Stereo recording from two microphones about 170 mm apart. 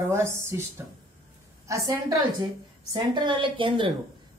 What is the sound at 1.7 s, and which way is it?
A woman's voice, 20° right (ahead or behind).